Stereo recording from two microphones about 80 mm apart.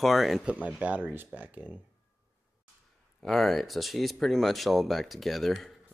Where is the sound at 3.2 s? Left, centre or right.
Centre.